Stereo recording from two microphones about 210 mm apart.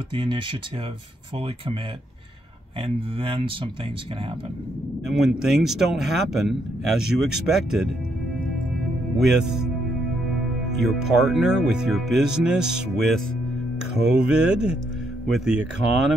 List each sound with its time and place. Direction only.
0.1 s speech: 25° right (ahead or behind)
2.8 s speech: 25° right (ahead or behind)
5.0 s a man's voice: centre (ahead or behind)
9.2 s a man's voice: centre (ahead or behind)
10.8 s a man's voice: centre (ahead or behind)